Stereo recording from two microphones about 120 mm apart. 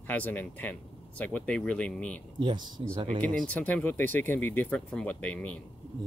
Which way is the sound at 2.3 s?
40° right (ahead or behind).